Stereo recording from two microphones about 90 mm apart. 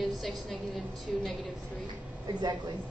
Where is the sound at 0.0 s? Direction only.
Centre (ahead or behind).